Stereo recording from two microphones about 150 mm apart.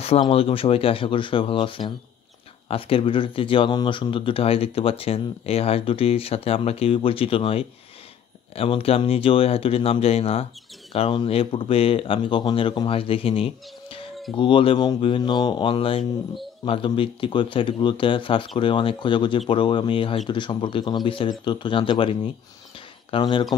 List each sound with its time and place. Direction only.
0.2 s speech: 40° left (ahead or behind)